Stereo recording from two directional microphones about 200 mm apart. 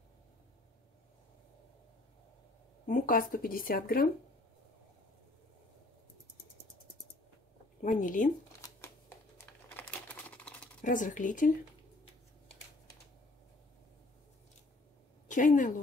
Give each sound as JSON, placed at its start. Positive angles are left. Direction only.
{"t": 2.9, "sound": "speech", "side_deg": 45}
{"t": 7.8, "sound": "speech", "side_deg": 40}
{"t": 9.4, "sound": "typing", "side_deg": 10}
{"t": 10.8, "sound": "speech", "side_deg": 40}
{"t": 15.2, "sound": "a woman's voice", "side_deg": 40}